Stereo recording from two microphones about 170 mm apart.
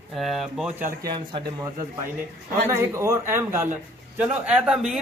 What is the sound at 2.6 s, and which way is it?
A man's voice, 15° right (ahead or behind).